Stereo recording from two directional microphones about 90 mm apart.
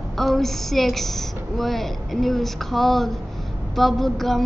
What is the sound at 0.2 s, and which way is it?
A woman's voice, 5° left (ahead or behind).